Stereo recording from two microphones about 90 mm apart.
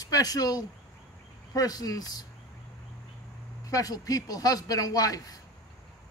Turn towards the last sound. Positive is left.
turn(degrees=45)  # may be behind; listen again after turning